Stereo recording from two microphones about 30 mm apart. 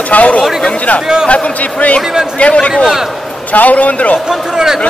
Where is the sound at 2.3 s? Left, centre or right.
Left.